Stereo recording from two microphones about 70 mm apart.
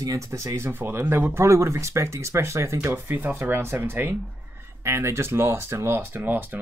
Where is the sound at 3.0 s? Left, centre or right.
Right.